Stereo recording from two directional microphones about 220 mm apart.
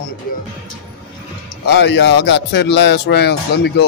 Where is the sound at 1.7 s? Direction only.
50° left (ahead or behind).